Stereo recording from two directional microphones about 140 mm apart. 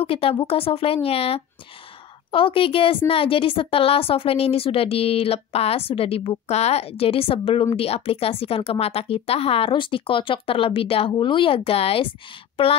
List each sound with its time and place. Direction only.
0.0 s a woman's voice: 40° left (ahead or behind)